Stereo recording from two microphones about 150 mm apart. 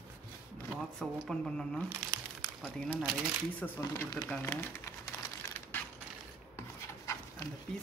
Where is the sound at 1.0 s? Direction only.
5° left (ahead or behind).